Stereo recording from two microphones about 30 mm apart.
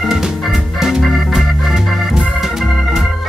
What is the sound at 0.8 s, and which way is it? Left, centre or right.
Music, centre.